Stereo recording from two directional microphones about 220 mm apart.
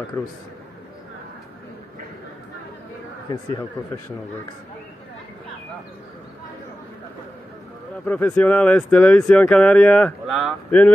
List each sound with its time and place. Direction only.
0.2 s speech: 5° left (ahead or behind)
3.3 s speech: 15° left (ahead or behind)
8.0 s speech: 10° left (ahead or behind)